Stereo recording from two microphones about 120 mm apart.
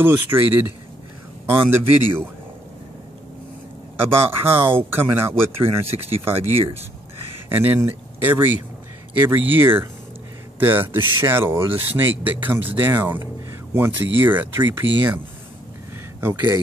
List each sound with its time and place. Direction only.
0.0 s a man's voice: 20° right (ahead or behind)
4.0 s speech: 20° right (ahead or behind)
5.9 s speech: 55° right (ahead or behind)
7.4 s speech: 15° right (ahead or behind)
16.2 s speech: 20° right (ahead or behind)